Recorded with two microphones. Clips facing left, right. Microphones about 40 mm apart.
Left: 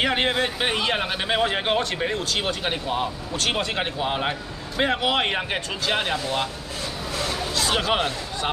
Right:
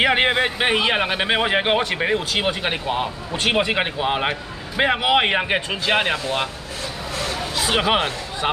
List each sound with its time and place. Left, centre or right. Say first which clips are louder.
0.0 s a man's voice: right 5 dB; right
7.7 s speech: right 5 dB; right